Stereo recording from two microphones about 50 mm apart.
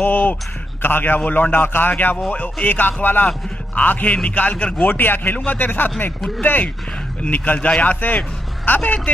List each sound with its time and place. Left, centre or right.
0.0 s a man's voice: left